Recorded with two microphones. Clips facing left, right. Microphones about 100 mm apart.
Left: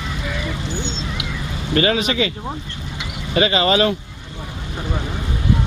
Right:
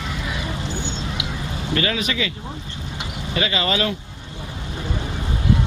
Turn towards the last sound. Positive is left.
turn(degrees=25)  # may be behind; listen again after turning